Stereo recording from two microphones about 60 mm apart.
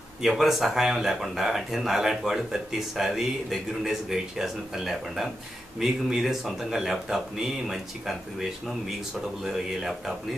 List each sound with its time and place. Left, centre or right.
0.2 s speech: centre